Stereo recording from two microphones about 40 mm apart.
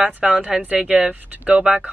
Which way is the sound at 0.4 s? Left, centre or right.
Right.